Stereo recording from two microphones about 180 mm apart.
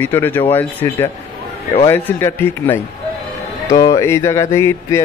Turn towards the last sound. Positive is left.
turn(degrees=15)  # may be behind; listen again after turning